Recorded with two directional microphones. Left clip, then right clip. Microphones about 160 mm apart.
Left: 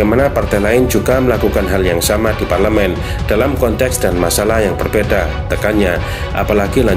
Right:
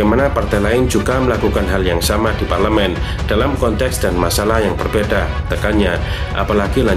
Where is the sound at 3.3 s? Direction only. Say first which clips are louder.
Left 2 dB; 20° left (ahead or behind).